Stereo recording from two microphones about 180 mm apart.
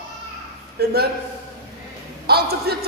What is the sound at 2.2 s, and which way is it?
Speech, 60° right (ahead or behind).